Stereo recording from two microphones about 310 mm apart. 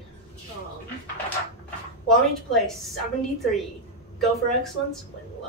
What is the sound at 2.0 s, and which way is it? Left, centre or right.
Speech, centre.